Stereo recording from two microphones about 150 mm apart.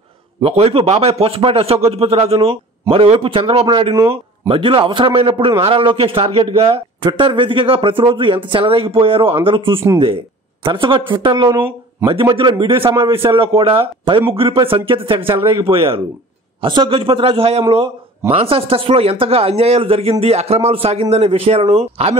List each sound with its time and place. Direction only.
0.4 s speech: 40° right (ahead or behind)
11.4 s speech: 20° right (ahead or behind)
12.1 s speech: 35° right (ahead or behind)